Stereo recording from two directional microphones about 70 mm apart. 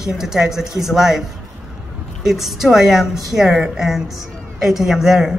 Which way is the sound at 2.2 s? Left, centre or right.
Centre.